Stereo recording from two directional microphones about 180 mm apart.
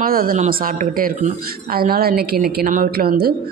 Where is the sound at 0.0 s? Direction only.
55° right (ahead or behind).